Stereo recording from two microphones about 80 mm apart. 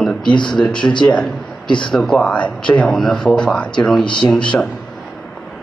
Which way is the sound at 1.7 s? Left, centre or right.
Left.